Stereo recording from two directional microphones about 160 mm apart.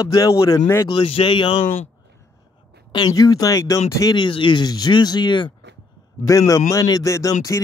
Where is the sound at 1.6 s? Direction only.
45° left (ahead or behind).